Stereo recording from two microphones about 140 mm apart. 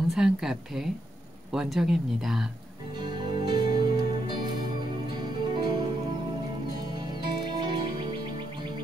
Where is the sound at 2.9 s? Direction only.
35° right (ahead or behind).